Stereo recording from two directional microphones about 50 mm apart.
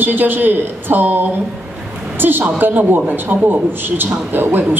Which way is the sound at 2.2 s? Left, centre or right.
Right.